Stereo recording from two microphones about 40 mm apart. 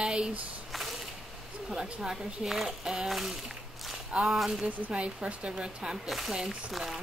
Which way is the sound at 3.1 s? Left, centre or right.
Centre.